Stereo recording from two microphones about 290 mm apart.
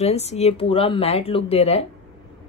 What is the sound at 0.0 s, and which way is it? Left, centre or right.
Speech, left.